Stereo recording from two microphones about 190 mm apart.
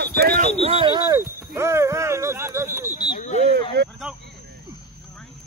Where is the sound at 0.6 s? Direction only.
30° right (ahead or behind).